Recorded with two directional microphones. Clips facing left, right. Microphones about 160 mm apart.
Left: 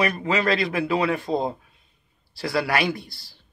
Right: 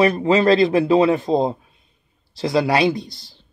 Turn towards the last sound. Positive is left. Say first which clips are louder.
# right 6 dB
turn(degrees=-20)  # may be behind; listen again after turning